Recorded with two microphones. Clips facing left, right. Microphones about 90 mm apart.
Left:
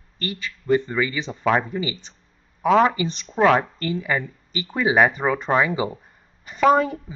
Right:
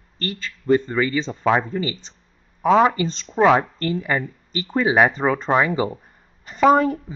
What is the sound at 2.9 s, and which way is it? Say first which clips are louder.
Speech: right 2 dB; 15° left (ahead or behind).